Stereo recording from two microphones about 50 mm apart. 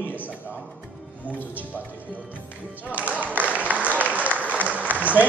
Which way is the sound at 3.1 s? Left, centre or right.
Right.